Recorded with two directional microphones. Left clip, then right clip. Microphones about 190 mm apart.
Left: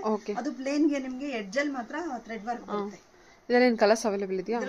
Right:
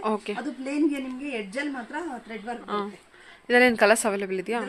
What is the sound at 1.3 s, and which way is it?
Speech, 15° left (ahead or behind).